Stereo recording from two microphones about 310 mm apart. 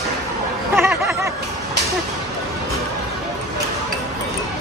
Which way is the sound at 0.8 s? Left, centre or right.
Centre.